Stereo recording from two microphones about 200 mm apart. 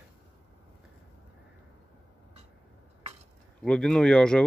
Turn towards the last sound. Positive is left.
turn(degrees=5)  # may be behind; listen again after turning